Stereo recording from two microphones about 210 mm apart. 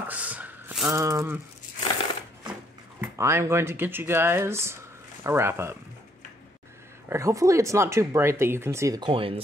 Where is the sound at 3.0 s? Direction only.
10° right (ahead or behind).